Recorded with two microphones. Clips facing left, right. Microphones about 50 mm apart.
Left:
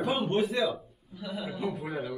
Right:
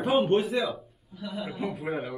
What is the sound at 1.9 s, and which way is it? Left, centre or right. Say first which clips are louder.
Speech: right 3 dB; right.